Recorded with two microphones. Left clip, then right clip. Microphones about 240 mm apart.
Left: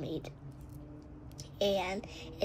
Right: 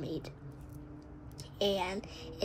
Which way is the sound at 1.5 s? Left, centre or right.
Centre.